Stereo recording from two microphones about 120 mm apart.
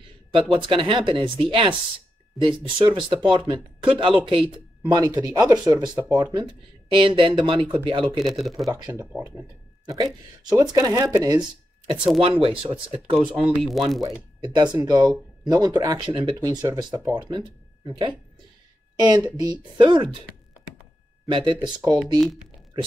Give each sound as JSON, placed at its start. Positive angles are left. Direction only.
{"t": 0.3, "sound": "speech", "side_deg": -45}
{"t": 8.2, "sound": "speech", "side_deg": 0}
{"t": 8.6, "sound": "speech", "side_deg": -35}
{"t": 12.2, "sound": "speech", "side_deg": -50}
{"t": 13.2, "sound": "speech", "side_deg": -5}
{"t": 14.5, "sound": "speech", "side_deg": -35}
{"t": 21.3, "sound": "speech", "side_deg": -45}